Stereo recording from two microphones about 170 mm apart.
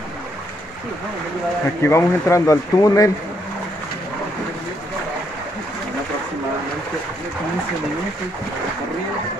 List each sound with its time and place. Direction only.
1.8 s speech: 15° left (ahead or behind)